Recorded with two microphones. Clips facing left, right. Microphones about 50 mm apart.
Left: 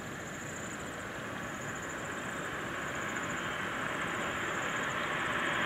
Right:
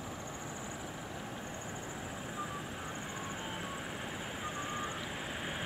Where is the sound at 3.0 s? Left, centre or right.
Left.